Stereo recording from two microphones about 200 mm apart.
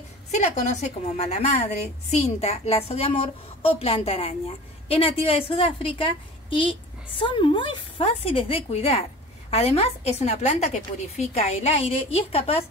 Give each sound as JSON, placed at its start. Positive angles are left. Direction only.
{"t": 0.3, "sound": "a woman's voice", "side_deg": 35}